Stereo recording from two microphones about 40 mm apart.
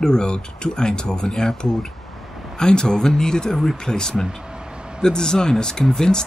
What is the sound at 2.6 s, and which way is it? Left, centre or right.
Speech, centre.